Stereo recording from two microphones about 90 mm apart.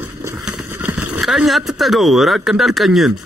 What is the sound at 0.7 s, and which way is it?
Vehicle, 20° right (ahead or behind).